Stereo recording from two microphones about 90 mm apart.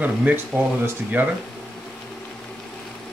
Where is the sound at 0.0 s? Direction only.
15° right (ahead or behind).